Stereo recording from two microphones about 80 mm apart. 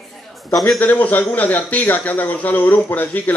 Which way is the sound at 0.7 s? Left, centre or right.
Left.